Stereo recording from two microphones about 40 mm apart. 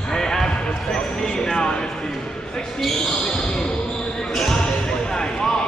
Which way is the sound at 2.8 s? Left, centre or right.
Centre.